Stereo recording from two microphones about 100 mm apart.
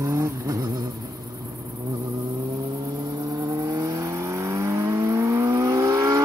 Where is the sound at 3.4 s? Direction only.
35° right (ahead or behind).